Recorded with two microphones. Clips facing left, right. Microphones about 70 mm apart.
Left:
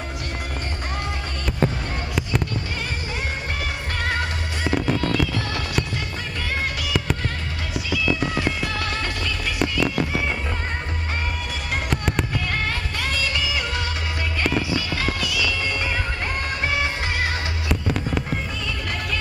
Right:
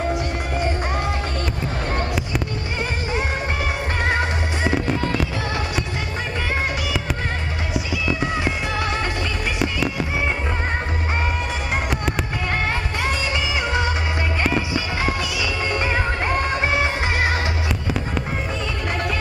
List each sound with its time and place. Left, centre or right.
4.1 s music: right
7.7 s music: right
9.6 s music: centre
13.0 s music: right
14.4 s music: right
17.6 s fireworks: centre